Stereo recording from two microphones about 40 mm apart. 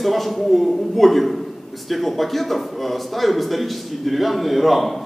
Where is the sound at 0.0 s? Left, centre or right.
Centre.